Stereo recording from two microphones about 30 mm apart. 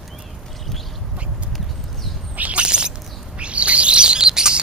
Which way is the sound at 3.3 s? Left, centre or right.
Right.